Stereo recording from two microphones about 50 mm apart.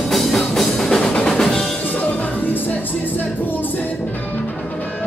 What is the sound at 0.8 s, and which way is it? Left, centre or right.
Drum, centre.